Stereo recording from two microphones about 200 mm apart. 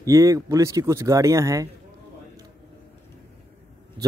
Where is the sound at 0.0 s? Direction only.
15° right (ahead or behind).